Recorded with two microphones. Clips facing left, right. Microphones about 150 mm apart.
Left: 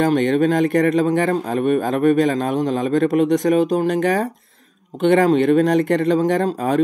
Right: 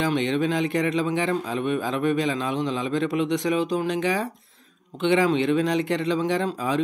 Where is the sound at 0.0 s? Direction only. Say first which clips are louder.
Left 7 dB; 50° left (ahead or behind).